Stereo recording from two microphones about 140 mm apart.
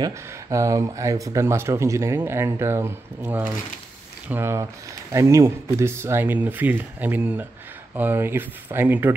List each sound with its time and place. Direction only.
0.0 s speech: 25° right (ahead or behind)